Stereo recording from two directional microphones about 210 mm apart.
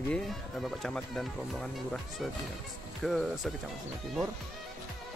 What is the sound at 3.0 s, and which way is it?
Speech, centre (ahead or behind).